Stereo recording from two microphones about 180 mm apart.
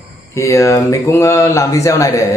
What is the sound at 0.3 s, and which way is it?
A man's voice, 15° left (ahead or behind).